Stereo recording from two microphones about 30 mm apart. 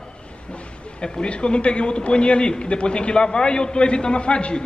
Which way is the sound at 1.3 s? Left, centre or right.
Left.